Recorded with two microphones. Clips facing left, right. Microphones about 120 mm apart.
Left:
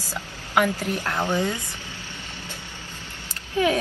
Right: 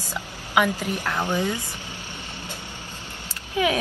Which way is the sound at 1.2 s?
15° right (ahead or behind).